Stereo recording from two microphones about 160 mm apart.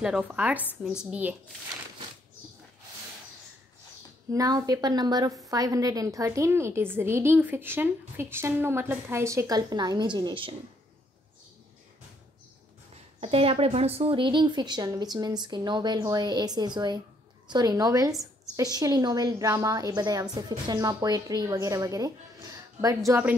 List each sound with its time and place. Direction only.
0.0 s a woman's voice: 5° right (ahead or behind)
4.3 s a woman's voice: 20° right (ahead or behind)
13.2 s a woman's voice: 35° right (ahead or behind); by 23.3 s 20° right (ahead or behind)